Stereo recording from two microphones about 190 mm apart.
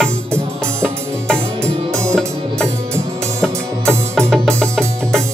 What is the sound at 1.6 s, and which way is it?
Music, 15° right (ahead or behind).